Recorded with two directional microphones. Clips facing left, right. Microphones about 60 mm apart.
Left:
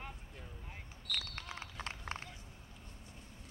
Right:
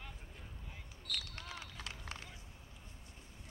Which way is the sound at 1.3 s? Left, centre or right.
Left.